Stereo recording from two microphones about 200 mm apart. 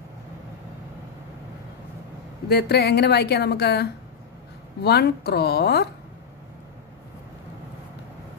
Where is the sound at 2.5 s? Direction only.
55° left (ahead or behind).